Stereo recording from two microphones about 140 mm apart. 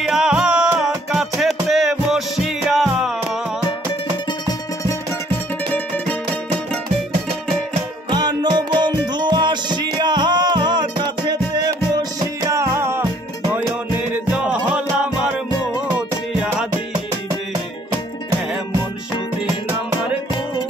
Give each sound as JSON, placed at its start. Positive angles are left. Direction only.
{"t": 0.0, "sound": "music", "side_deg": -5}
{"t": 8.1, "sound": "music", "side_deg": -30}
{"t": 14.1, "sound": "music", "side_deg": -10}